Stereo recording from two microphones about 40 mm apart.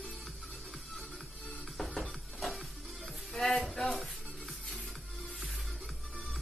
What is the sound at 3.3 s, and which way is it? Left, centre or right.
Speech, centre.